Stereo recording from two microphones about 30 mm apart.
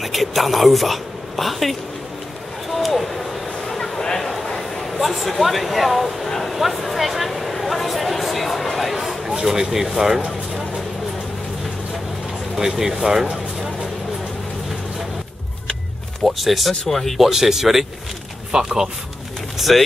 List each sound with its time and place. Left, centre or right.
0.0 s speech: centre
2.7 s a sound: centre
3.6 s a sound: centre
4.6 s speech: centre
6.2 s speech: centre
6.5 s a sound: centre
9.2 s speech: centre
12.5 s speech: centre
16.3 s speech: centre
17.2 s speech: centre
19.7 s speech: centre